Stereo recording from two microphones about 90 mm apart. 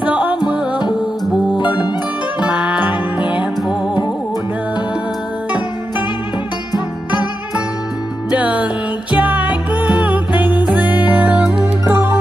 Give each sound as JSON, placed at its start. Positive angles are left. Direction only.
{"t": 0.1, "sound": "music", "side_deg": -10}
{"t": 1.6, "sound": "music", "side_deg": 55}
{"t": 2.4, "sound": "music", "side_deg": -10}
{"t": 6.7, "sound": "music", "side_deg": 55}
{"t": 8.3, "sound": "music", "side_deg": -15}
{"t": 11.9, "sound": "music", "side_deg": -30}